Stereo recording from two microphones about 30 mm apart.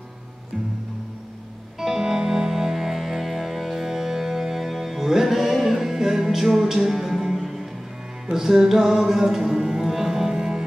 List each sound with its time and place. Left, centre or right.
1.8 s music: centre
8.4 s music: centre